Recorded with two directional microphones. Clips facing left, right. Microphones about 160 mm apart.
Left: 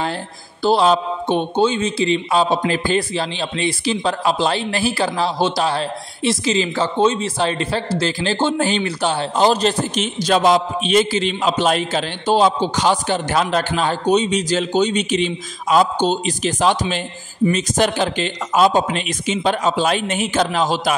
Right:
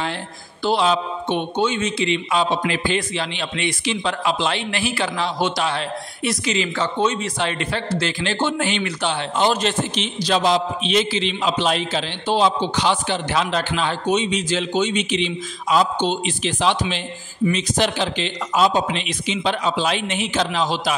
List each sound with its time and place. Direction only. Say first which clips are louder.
0.7 s a man's voice: left 4 dB; 35° left (ahead or behind)